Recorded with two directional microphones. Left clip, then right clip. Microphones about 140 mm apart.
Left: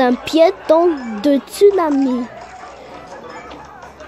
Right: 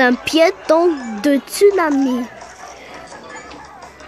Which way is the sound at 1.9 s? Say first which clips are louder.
Even; 40° right (ahead or behind).